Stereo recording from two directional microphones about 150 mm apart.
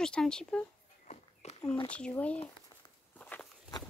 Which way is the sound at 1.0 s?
50° left (ahead or behind).